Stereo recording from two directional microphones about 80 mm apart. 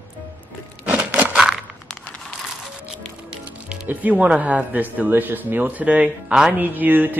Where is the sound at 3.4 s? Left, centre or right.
Centre.